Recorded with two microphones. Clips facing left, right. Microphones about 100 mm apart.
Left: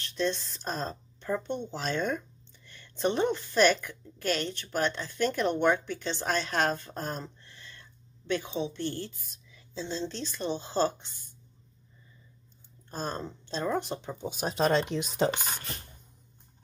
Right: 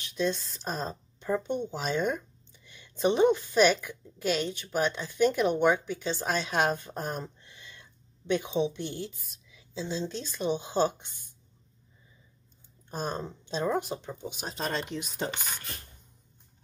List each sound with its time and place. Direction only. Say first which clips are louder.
0.0 s a woman's voice: right 1 dB; 10° right (ahead or behind)
12.9 s a woman's voice: right 1 dB; 15° right (ahead or behind)
14.2 s speech: left 5 dB; 40° left (ahead or behind)
14.5 s speech: left 7 dB; 90° left